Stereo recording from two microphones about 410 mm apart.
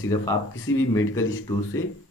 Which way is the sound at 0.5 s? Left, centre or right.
Left.